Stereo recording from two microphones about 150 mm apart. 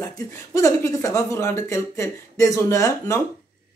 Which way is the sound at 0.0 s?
25° left (ahead or behind).